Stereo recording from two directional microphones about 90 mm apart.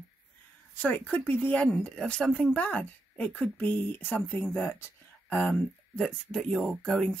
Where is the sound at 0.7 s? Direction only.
15° left (ahead or behind).